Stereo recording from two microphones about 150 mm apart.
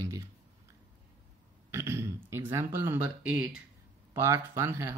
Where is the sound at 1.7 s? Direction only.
15° right (ahead or behind).